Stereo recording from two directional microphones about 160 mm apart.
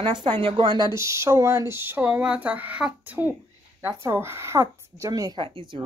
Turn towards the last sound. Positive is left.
turn(degrees=-30)  # may be behind; listen again after turning